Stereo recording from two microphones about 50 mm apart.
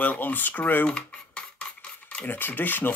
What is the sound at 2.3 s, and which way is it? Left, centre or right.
Speech, left.